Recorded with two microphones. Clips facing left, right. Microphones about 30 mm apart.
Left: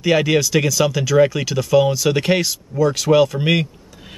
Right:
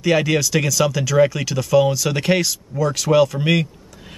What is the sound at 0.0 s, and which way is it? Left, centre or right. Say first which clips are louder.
Speech: left 1 dB; centre.